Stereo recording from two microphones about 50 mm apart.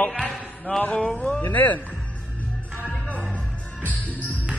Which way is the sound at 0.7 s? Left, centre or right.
Left.